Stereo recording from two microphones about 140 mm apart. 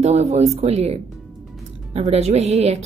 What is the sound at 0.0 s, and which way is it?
A woman's voice, 55° right (ahead or behind).